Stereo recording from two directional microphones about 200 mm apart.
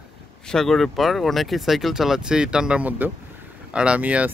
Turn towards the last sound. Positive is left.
turn(degrees=-5)  # may be behind; listen again after turning